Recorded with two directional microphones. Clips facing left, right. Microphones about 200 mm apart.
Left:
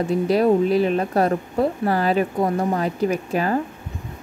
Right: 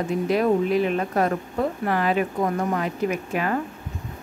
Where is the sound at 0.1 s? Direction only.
35° left (ahead or behind).